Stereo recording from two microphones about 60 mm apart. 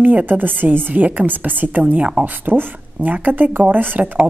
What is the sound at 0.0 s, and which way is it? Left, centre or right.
A woman's voice, right.